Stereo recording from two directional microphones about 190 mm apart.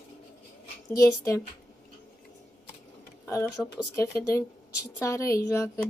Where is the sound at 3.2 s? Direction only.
15° left (ahead or behind).